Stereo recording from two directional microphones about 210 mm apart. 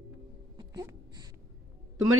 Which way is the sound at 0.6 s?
20° right (ahead or behind).